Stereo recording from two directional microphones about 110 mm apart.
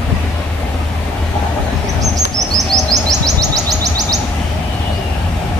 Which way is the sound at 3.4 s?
35° right (ahead or behind).